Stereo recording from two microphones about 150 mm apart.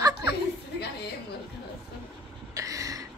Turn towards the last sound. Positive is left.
turn(degrees=-20)  # may be behind; listen again after turning